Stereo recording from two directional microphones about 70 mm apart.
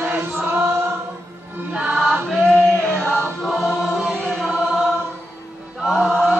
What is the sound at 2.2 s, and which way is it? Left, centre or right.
Chant, centre.